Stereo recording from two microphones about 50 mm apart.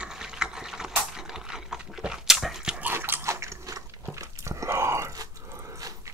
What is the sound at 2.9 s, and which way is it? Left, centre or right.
Dog, right.